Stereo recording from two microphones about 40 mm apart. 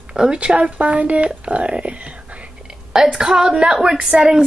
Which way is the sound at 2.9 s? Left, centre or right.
Centre.